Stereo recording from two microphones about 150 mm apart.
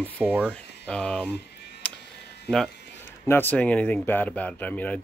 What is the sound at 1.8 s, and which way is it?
Music, 10° left (ahead or behind).